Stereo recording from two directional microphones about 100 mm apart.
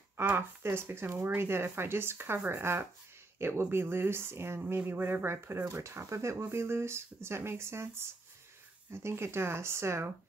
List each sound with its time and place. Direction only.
0.2 s speech: 20° right (ahead or behind)